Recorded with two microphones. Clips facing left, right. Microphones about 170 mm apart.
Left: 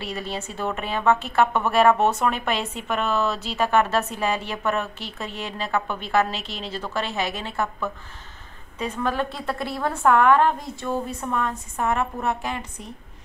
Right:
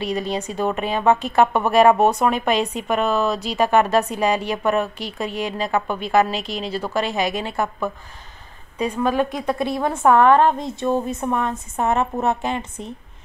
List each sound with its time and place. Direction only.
0.0 s a woman's voice: 15° right (ahead or behind)